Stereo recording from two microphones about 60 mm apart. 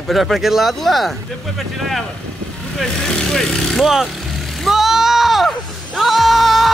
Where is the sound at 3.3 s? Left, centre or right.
Centre.